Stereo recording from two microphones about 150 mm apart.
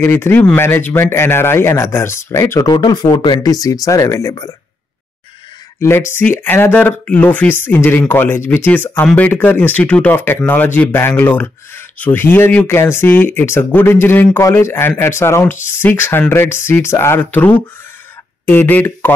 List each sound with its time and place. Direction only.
0.0 s speech: 15° left (ahead or behind)
2.6 s speech: 30° left (ahead or behind)
5.8 s speech: 15° left (ahead or behind)